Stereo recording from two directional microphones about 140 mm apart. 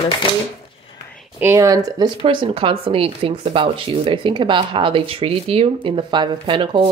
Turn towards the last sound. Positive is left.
turn(degrees=-35)  # may be behind; listen again after turning